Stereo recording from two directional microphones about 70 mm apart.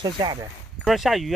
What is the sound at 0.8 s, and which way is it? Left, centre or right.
Speech, centre.